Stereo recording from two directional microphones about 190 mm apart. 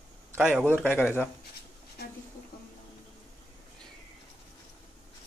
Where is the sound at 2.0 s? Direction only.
60° left (ahead or behind).